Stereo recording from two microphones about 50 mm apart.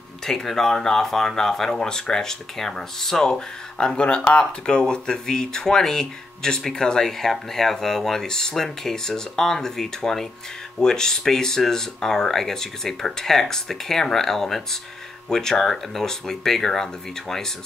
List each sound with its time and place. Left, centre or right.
0.2 s speech: centre